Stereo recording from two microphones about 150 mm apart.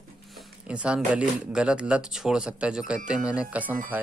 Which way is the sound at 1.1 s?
5° right (ahead or behind).